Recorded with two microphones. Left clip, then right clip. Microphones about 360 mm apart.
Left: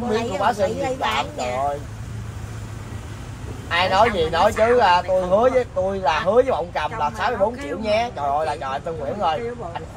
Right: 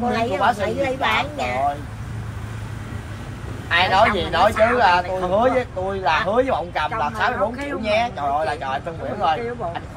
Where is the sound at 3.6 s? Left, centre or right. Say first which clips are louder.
Right 1 dB; left.